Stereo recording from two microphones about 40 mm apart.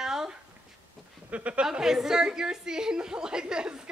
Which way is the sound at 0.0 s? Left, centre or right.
Centre.